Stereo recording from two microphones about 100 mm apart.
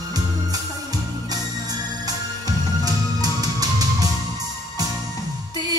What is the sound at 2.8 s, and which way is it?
Music, 40° right (ahead or behind).